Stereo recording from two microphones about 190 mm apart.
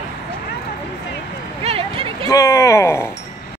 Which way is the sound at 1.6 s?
30° right (ahead or behind).